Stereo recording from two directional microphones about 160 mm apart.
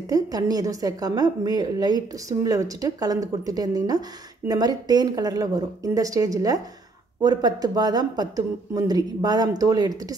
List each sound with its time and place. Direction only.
0.1 s a woman's voice: 25° right (ahead or behind)